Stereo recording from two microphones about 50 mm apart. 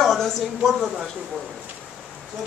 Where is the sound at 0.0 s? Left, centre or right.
Centre.